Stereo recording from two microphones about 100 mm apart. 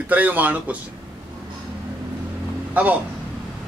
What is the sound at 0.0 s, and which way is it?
Speech, 15° right (ahead or behind).